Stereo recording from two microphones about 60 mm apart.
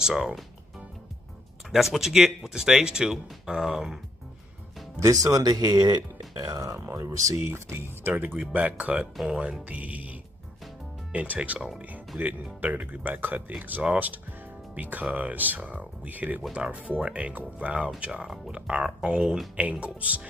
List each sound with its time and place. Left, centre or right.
0.0 s speech: centre
1.7 s speech: centre
5.0 s speech: right
8.0 s speech: right